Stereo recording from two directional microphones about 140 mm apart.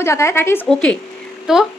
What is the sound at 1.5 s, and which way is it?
Speech, 5° right (ahead or behind).